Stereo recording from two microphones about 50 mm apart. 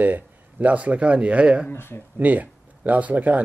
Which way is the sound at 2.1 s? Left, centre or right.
Right.